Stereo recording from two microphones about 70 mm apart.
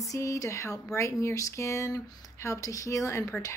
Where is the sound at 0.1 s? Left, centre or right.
Left.